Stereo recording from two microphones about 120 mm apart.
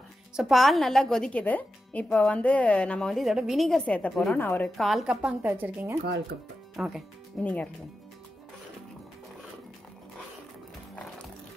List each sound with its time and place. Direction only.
0.4 s a woman's voice: centre (ahead or behind)
4.4 s a woman's voice: 15° left (ahead or behind)
4.7 s a woman's voice: centre (ahead or behind)
5.5 s speech: 15° right (ahead or behind)
6.8 s a woman's voice: 5° right (ahead or behind)
7.4 s a woman's voice: 10° left (ahead or behind)